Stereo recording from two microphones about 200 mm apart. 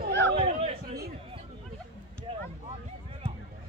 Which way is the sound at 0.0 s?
55° right (ahead or behind).